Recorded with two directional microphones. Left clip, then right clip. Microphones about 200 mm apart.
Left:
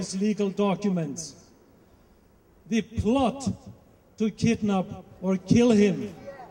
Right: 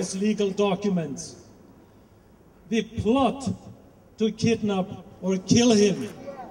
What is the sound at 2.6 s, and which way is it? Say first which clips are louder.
A man's voice: right 2 dB; 40° left (ahead or behind).